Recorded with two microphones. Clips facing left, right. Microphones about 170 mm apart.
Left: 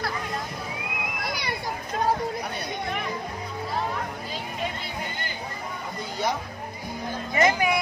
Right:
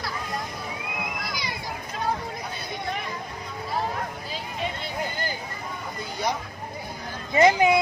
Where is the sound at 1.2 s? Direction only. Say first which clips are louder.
Left 3 dB; 60° left (ahead or behind).